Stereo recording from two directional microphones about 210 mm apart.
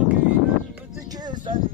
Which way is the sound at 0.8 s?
15° right (ahead or behind).